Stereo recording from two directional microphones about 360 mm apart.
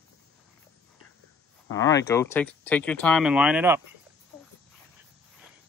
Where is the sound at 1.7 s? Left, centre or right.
Centre.